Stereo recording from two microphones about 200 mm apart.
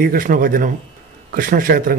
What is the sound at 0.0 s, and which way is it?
A man's voice, 45° right (ahead or behind).